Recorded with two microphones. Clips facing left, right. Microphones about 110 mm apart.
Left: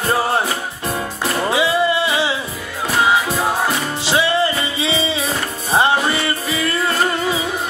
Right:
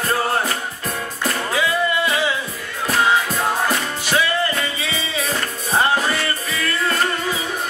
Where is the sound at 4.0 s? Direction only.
25° left (ahead or behind).